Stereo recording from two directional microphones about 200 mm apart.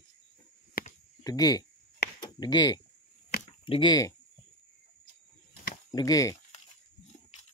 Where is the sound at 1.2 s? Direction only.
20° left (ahead or behind).